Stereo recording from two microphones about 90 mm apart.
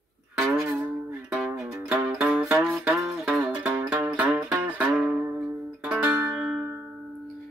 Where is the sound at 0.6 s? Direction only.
30° right (ahead or behind).